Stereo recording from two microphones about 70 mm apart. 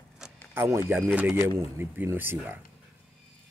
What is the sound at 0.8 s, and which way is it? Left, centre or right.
Speech, right.